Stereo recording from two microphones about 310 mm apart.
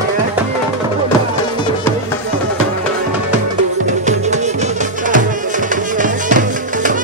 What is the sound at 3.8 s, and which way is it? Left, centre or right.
Music, right.